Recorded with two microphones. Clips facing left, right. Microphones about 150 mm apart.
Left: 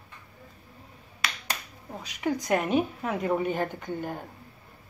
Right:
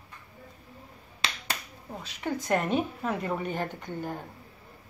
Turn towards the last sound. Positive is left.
turn(degrees=15)  # may be behind; listen again after turning